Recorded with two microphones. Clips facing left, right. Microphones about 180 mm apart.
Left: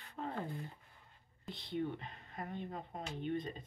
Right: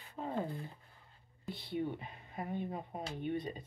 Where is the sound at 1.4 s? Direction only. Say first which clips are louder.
Right 1 dB; 10° right (ahead or behind).